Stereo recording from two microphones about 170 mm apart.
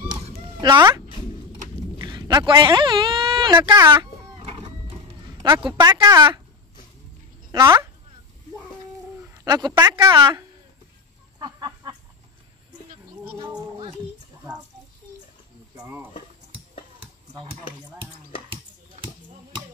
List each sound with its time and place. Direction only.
0.6 s speech: 25° right (ahead or behind)
2.0 s a sound: 25° right (ahead or behind)
3.5 s speech: 15° right (ahead or behind)
3.9 s a sound: 30° right (ahead or behind)
5.4 s speech: 25° right (ahead or behind)
7.5 s speech: 15° right (ahead or behind)
9.2 s speech: 15° right (ahead or behind)
11.3 s a sound: 25° right (ahead or behind)
15.8 s speech: 10° right (ahead or behind)